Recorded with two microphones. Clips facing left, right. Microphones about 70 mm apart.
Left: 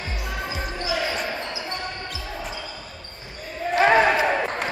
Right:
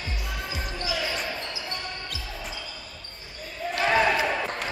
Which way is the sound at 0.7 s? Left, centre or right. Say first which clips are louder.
Left 4 dB; left.